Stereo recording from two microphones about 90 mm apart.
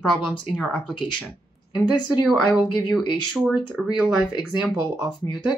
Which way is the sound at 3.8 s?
10° right (ahead or behind).